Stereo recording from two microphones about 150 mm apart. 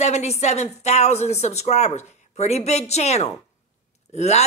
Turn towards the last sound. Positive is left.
turn(degrees=45)  # may be behind; listen again after turning